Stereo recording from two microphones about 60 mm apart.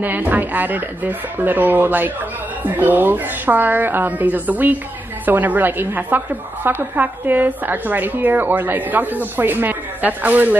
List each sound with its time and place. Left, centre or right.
0.0 s a woman's voice: right